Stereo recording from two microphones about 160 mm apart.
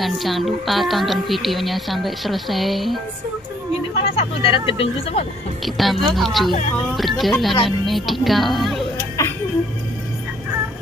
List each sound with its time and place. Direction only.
0.0 s a woman's voice: centre (ahead or behind)
4.0 s speech: 35° left (ahead or behind)
5.8 s a woman's voice: centre (ahead or behind)
9.2 s music: 20° left (ahead or behind)